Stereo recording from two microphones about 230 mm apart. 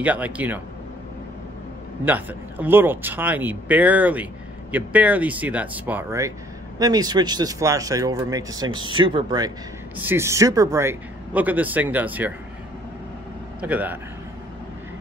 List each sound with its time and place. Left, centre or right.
0.0 s speech: centre
2.0 s speech: centre
13.6 s speech: centre